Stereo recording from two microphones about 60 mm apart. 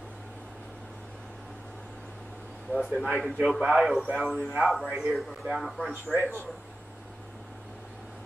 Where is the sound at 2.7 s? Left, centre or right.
Centre.